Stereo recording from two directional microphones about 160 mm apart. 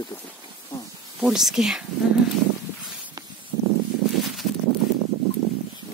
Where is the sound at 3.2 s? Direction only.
25° right (ahead or behind).